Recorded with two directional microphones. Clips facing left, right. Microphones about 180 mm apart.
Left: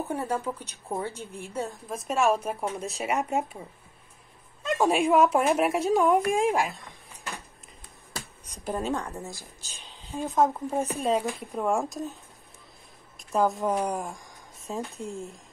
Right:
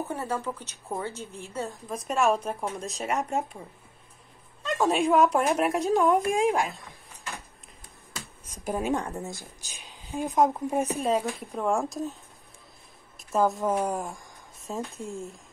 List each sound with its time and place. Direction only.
0.1 s a woman's voice: 10° left (ahead or behind)
1.9 s speech: centre (ahead or behind)
4.6 s speech: 10° left (ahead or behind)
8.6 s a woman's voice: 10° right (ahead or behind)
11.0 s speech: centre (ahead or behind)
13.2 s speech: centre (ahead or behind)